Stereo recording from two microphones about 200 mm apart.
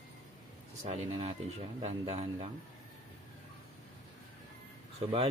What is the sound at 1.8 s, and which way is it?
Speech, 30° right (ahead or behind).